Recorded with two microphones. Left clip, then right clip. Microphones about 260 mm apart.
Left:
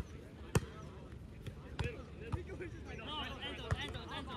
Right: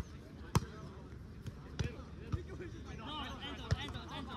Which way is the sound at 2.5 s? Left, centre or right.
Right.